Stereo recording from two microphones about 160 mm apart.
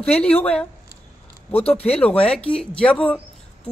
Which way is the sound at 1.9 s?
10° left (ahead or behind).